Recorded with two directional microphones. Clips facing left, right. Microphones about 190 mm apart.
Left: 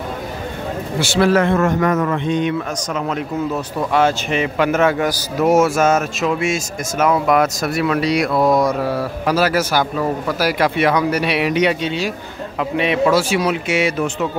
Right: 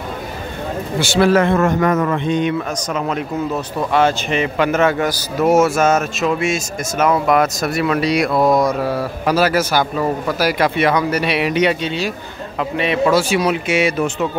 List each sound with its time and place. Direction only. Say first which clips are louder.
0.9 s speech: right 1 dB; centre (ahead or behind)
1.3 s a man's voice: right 1 dB; 20° right (ahead or behind)
3.9 s a man's voice: right 1 dB; 5° left (ahead or behind)
8.3 s a man's voice: right 1 dB; 20° right (ahead or behind)
9.2 s a man's voice: right 1 dB; centre (ahead or behind)
13.0 s speech: right 2 dB; centre (ahead or behind)